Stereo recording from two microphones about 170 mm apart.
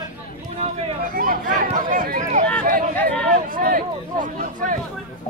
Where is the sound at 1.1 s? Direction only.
55° right (ahead or behind).